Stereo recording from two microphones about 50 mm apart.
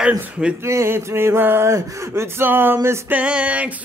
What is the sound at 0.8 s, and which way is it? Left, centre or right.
Mantra, right.